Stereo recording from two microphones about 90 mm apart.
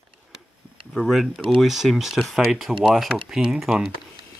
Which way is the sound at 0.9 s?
Centre (ahead or behind).